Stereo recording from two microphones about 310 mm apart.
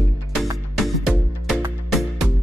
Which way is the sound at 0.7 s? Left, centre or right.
Centre.